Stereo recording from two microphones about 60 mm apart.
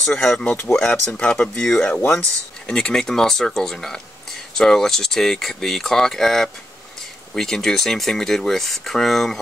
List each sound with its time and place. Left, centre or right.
0.0 s speech: centre